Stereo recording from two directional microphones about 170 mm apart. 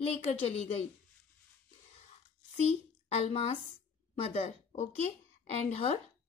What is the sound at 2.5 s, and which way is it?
A child's voice, 40° left (ahead or behind).